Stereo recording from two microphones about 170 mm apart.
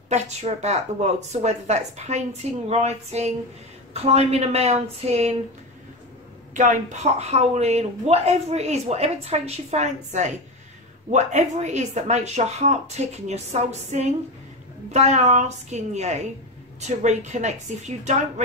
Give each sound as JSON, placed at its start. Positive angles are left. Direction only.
{"t": 0.1, "sound": "speech", "side_deg": -40}
{"t": 6.5, "sound": "speech", "side_deg": -45}